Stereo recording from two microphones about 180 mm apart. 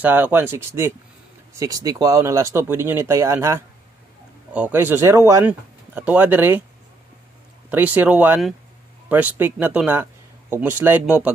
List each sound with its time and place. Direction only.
0.0 s speech: 10° right (ahead or behind)
7.7 s speech: 10° right (ahead or behind)